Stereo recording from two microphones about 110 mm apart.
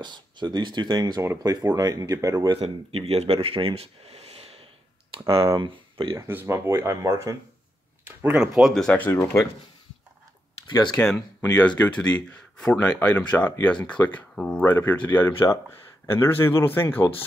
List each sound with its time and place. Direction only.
0.0 s speech: 45° right (ahead or behind)
2.6 s speech: 60° right (ahead or behind)
5.6 s speech: 50° right (ahead or behind)
6.1 s speech: 25° right (ahead or behind)
8.4 s speech: 5° right (ahead or behind)
8.9 s speech: 15° left (ahead or behind)
9.2 s speech: 25° left (ahead or behind)
11.0 s speech: 10° left (ahead or behind)